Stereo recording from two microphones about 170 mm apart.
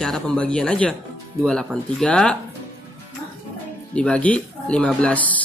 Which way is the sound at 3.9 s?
5° left (ahead or behind).